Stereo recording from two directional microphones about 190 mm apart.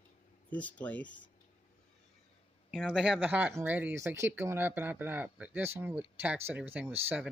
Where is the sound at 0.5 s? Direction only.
5° left (ahead or behind).